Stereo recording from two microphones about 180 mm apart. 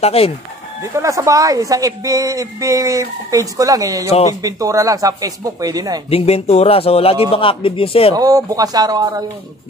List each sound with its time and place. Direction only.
0.0 s speech: 35° left (ahead or behind)
0.9 s a woman's voice: 15° right (ahead or behind)
6.0 s speech: 35° left (ahead or behind)
8.2 s a woman's voice: 20° right (ahead or behind)